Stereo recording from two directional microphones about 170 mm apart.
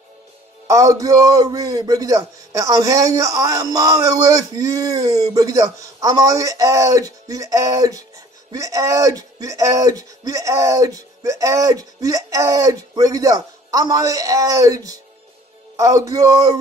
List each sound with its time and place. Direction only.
0.7 s a man's voice: 20° right (ahead or behind)